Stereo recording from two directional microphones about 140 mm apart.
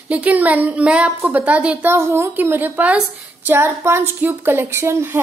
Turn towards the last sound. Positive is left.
turn(degrees=-15)  # may be behind; listen again after turning